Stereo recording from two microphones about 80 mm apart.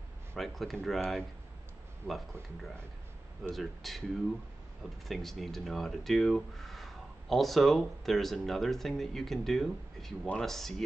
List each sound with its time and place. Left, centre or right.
0.4 s speech: centre
2.0 s speech: right
3.4 s speech: centre
5.0 s speech: centre